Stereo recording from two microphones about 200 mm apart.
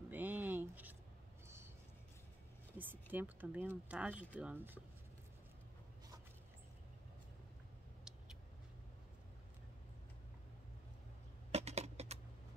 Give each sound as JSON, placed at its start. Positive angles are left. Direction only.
{"t": 0.1, "sound": "a sound", "side_deg": -10}
{"t": 2.8, "sound": "speech", "side_deg": -10}
{"t": 11.5, "sound": "typing", "side_deg": -30}